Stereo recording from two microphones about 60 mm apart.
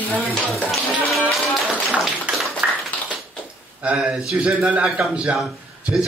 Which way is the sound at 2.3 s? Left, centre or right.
Right.